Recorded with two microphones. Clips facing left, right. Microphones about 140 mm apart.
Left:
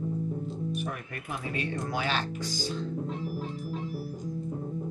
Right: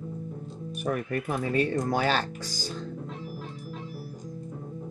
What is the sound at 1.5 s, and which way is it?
Speech, 40° right (ahead or behind).